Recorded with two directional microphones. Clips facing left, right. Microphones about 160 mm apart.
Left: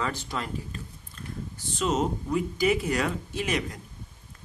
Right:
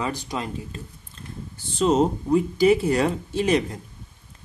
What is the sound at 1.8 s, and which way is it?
Speech, 30° right (ahead or behind).